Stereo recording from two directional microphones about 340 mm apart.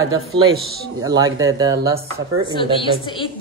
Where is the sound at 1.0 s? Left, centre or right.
Centre.